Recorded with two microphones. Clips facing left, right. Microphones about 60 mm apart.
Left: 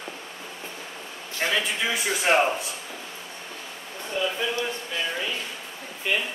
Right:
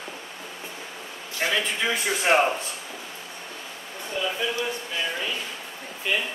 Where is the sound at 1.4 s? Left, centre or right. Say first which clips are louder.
Even; centre.